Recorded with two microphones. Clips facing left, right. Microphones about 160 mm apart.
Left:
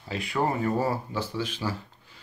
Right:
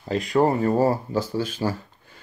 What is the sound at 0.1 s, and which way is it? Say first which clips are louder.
Speech: right 7 dB; 40° right (ahead or behind).